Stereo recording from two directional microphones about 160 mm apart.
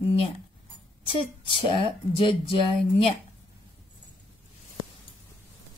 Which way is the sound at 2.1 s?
35° left (ahead or behind).